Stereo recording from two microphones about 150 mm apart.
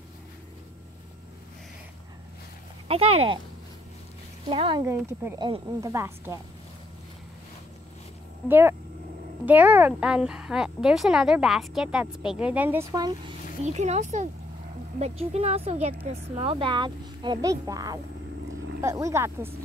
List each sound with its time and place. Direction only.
2.9 s speech: 40° right (ahead or behind)
4.5 s speech: 35° right (ahead or behind)
5.7 s speech: 20° right (ahead or behind)
8.5 s speech: 15° right (ahead or behind)
12.9 s speech: 25° right (ahead or behind)
13.7 s speech: 50° right (ahead or behind); by 19.5 s 15° right (ahead or behind)